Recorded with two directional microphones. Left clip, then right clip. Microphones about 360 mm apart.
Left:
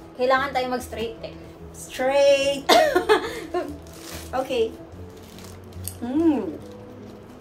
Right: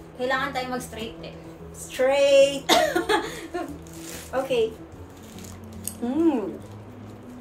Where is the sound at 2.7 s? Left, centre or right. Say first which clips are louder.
Left 4 dB; centre.